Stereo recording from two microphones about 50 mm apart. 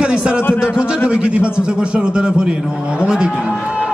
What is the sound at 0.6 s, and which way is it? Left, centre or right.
A man's voice, centre.